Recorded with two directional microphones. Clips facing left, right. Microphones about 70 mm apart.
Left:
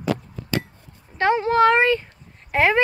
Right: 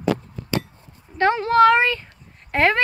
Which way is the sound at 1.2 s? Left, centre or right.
Centre.